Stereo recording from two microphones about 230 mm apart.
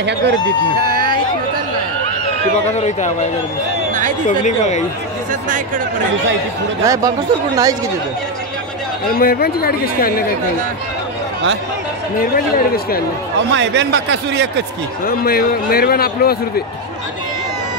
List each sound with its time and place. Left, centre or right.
2.7 s a man's voice: left
4.4 s a man's voice: left
6.8 s speech: centre
9.0 s a man's voice: left
12.2 s a man's voice: left
13.5 s a man's voice: right
15.0 s a man's voice: left